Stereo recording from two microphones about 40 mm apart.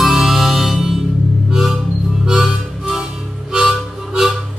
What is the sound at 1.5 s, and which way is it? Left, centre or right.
Music, centre.